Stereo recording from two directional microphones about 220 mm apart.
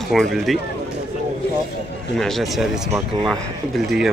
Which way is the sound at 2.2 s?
Centre (ahead or behind).